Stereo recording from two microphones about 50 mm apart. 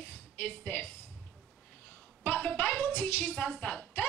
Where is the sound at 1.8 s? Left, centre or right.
Left.